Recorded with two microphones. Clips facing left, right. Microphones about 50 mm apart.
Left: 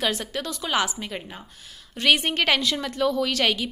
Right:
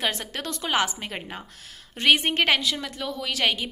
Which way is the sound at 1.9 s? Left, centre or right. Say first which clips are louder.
Even; right.